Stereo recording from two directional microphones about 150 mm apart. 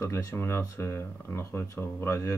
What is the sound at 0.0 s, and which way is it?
Speech, 20° left (ahead or behind).